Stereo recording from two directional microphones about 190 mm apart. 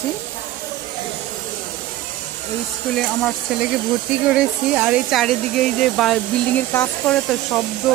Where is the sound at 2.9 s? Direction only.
Centre (ahead or behind).